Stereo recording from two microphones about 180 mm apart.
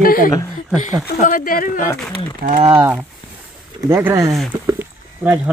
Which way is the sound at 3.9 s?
15° right (ahead or behind).